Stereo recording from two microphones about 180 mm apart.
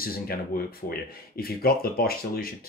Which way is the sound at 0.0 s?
55° left (ahead or behind).